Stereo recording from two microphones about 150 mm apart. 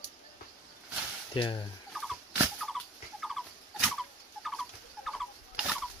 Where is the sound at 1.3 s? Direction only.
35° left (ahead or behind).